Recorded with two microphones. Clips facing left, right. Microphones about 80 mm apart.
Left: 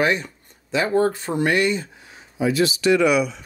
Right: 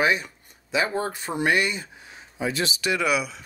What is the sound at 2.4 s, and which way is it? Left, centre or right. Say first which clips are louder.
Speech: left 7 dB; right.